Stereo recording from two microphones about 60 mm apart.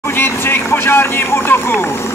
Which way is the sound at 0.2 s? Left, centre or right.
Left.